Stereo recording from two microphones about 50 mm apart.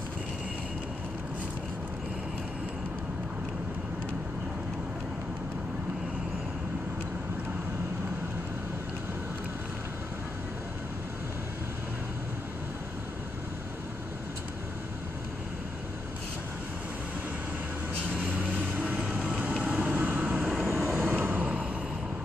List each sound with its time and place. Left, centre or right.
18.1 s vehicle: right
19.8 s vehicle: right